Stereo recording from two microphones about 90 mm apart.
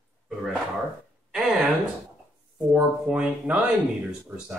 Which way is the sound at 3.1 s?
10° right (ahead or behind).